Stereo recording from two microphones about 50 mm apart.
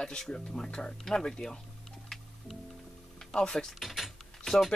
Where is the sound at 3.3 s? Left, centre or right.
Centre.